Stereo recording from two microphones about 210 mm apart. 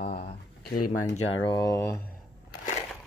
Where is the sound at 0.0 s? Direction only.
45° left (ahead or behind).